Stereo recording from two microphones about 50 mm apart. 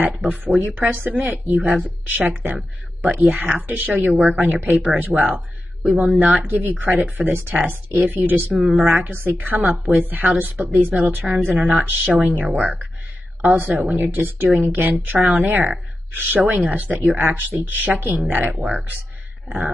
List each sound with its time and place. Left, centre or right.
0.3 s speech: right
5.8 s speech: centre
6.1 s speech: right
18.5 s speech: centre